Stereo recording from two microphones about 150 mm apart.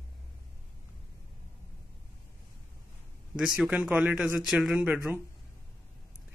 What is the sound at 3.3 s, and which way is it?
Speech, 5° right (ahead or behind).